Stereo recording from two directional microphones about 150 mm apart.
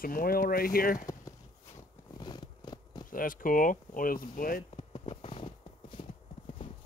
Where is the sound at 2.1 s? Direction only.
30° left (ahead or behind).